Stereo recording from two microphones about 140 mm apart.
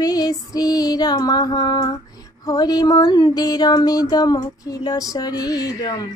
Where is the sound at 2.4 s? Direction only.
30° left (ahead or behind).